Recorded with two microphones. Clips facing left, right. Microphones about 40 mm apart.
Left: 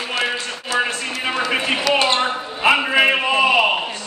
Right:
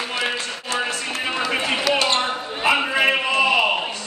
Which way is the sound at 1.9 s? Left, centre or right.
Left.